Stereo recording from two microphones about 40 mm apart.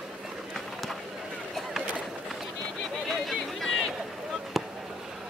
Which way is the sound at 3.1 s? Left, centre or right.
Centre.